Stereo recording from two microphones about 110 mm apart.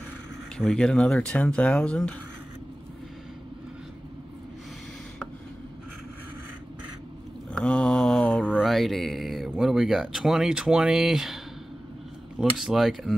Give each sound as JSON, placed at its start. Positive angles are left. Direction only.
{"t": 0.6, "sound": "speech", "side_deg": 5}
{"t": 7.5, "sound": "mantra", "side_deg": 10}
{"t": 8.6, "sound": "speech", "side_deg": 0}